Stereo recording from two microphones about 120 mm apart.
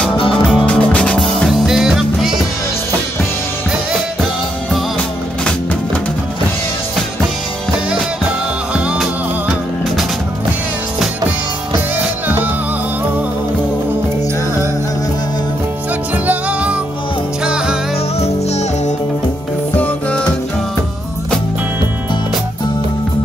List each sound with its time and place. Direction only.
0.3 s music: centre (ahead or behind)
0.7 s music: 10° left (ahead or behind)
1.4 s music: 5° right (ahead or behind)
8.7 s music: 5° right (ahead or behind)
16.3 s music: 10° right (ahead or behind)
18.2 s music: 65° left (ahead or behind)
19.7 s music: 10° left (ahead or behind)